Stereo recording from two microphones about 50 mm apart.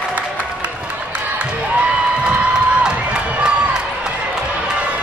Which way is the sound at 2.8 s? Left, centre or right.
Right.